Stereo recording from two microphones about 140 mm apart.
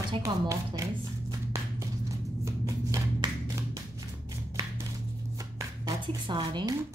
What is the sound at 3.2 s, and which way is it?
Music, 35° right (ahead or behind).